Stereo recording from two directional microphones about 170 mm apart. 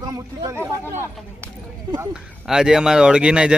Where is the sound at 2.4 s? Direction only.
5° right (ahead or behind).